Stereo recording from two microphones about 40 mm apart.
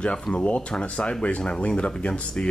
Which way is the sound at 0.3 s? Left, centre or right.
Left.